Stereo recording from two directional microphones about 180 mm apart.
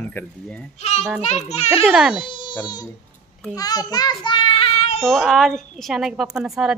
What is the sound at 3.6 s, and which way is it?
A child's voice, 20° left (ahead or behind).